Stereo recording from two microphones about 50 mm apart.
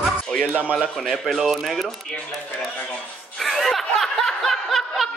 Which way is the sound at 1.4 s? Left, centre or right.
Centre.